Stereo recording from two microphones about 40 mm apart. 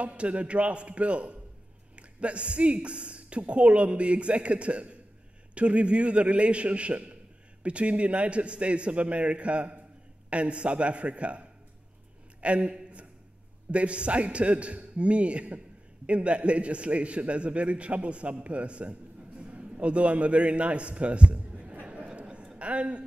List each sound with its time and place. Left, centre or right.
0.0 s a woman's voice: right
22.0 s a sound: right
22.6 s a woman's voice: right